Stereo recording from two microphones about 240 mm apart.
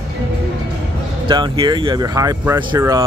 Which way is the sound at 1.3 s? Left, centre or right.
Centre.